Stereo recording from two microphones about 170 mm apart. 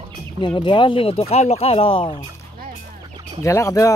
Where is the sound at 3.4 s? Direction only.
15° left (ahead or behind).